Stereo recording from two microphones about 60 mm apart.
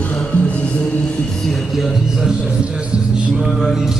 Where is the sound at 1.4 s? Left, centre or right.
Centre.